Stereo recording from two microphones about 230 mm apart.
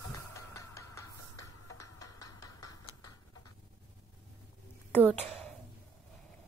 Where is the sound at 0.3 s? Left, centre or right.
Centre.